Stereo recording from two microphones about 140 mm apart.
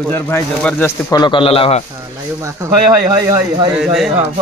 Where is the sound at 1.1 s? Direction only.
35° left (ahead or behind).